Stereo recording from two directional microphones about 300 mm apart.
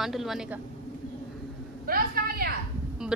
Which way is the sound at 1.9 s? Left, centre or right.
Right.